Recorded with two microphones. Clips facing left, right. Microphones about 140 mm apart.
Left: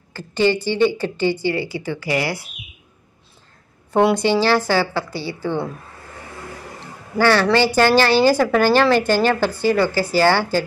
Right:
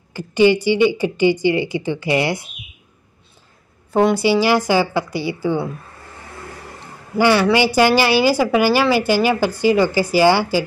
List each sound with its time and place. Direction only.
0.1 s a woman's voice: 15° right (ahead or behind)
3.9 s a woman's voice: 5° right (ahead or behind)
7.2 s a woman's voice: 15° right (ahead or behind)